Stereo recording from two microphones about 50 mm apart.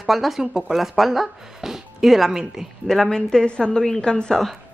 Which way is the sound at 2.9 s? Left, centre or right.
Centre.